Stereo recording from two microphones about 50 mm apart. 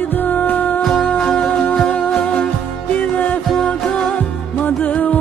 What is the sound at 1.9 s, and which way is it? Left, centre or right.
Music, left.